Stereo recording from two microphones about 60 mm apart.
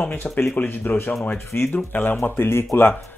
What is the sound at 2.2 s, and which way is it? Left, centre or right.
Speech, left.